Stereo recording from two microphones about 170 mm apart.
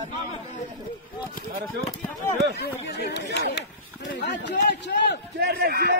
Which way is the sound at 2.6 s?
75° left (ahead or behind).